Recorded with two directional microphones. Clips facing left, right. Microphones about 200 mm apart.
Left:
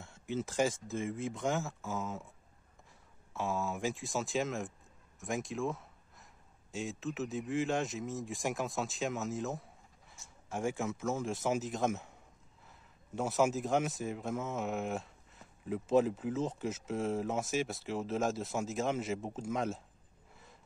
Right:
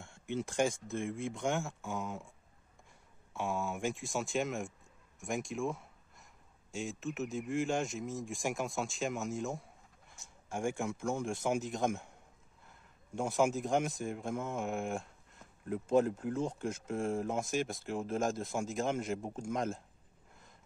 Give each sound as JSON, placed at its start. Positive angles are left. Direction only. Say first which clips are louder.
{"t": 0.0, "sound": "speech", "louder": "even", "side_deg": 5}
{"t": 5.2, "sound": "a sound", "louder": "even", "side_deg": 0}
{"t": 7.2, "sound": "speech", "louder": "even", "side_deg": 0}
{"t": 13.1, "sound": "speech", "louder": "even", "side_deg": 5}
{"t": 19.1, "sound": "a man's voice", "louder": "even", "side_deg": -10}
{"t": 19.4, "sound": "speech", "louder": "even", "side_deg": 5}